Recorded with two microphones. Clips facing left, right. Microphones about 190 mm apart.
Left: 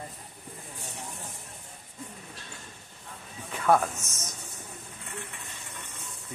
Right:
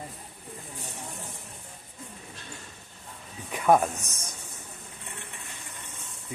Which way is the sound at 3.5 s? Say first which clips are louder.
Right 2 dB; 15° right (ahead or behind).